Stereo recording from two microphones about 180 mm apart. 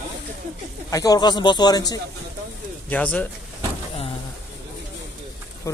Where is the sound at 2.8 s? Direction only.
10° left (ahead or behind).